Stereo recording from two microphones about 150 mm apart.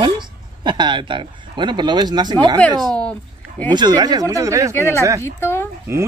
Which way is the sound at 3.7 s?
30° right (ahead or behind).